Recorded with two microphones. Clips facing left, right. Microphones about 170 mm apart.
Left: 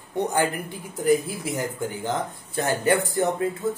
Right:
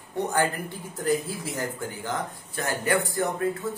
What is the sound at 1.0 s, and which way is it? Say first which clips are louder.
A man's voice: left 5 dB; 15° left (ahead or behind).